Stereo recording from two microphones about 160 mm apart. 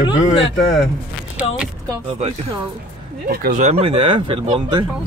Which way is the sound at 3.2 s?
65° right (ahead or behind).